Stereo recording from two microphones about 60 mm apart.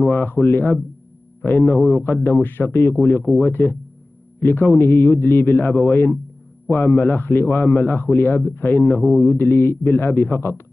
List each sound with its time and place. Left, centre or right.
0.0 s a man's voice: left